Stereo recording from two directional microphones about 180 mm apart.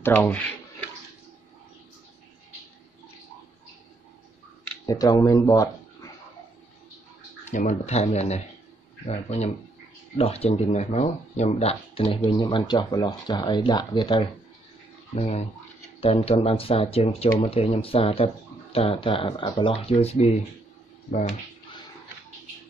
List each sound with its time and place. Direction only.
0.0 s speech: 10° left (ahead or behind)
4.8 s speech: 20° left (ahead or behind)
7.4 s speech: 45° left (ahead or behind)